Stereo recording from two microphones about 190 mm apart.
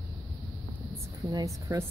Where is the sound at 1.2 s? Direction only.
20° right (ahead or behind).